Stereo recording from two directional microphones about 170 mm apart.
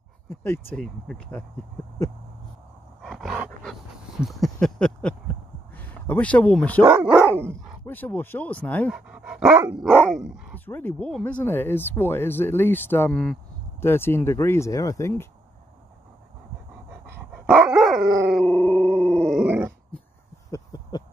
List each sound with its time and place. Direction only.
0.3 s speech: 15° left (ahead or behind)
3.0 s roar: centre (ahead or behind)
4.2 s a sound: centre (ahead or behind)
6.9 s speech: 15° right (ahead or behind)
7.8 s speech: 10° left (ahead or behind)
8.9 s dog: 5° right (ahead or behind)
10.5 s speech: 10° left (ahead or behind)
17.6 s dog: centre (ahead or behind)
18.3 s a sound: 10° left (ahead or behind)
19.4 s dog: 10° right (ahead or behind)
20.5 s a sound: 20° left (ahead or behind)